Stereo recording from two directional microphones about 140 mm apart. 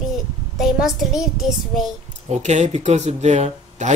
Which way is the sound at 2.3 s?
55° right (ahead or behind).